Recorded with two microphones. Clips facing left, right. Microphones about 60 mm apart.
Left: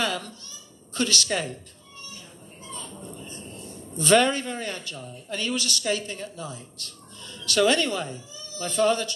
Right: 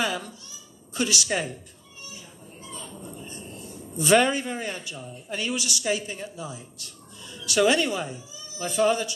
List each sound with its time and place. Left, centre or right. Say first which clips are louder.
0.0 s a child's voice: even; centre
2.7 s a sound: left 1 dB; centre
3.3 s speech: even; centre